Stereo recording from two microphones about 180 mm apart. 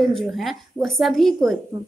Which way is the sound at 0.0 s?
Centre (ahead or behind).